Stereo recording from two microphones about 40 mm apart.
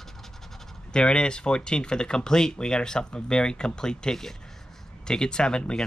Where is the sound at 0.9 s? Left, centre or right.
Left.